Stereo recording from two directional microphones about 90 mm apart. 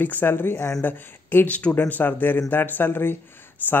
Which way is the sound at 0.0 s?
20° left (ahead or behind).